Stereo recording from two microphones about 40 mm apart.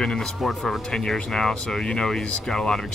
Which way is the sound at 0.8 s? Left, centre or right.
Centre.